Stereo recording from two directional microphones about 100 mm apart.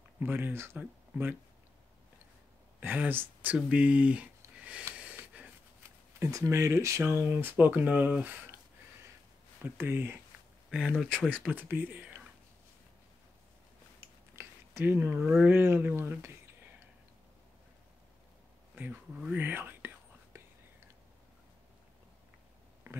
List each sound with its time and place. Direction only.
0.2 s speech: 20° right (ahead or behind)
2.8 s speech: 20° right (ahead or behind)
4.9 s gasp: 15° right (ahead or behind)
6.1 s speech: 30° right (ahead or behind)
9.6 s speech: 20° right (ahead or behind)
10.7 s speech: 5° right (ahead or behind)
11.3 s speech: 20° right (ahead or behind)
14.3 s speech: 25° right (ahead or behind)
19.3 s speech: 20° right (ahead or behind)
20.3 s whispering: 25° right (ahead or behind)
22.8 s a sound: 30° right (ahead or behind)